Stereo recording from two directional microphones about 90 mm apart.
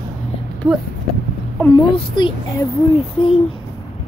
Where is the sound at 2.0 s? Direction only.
65° left (ahead or behind).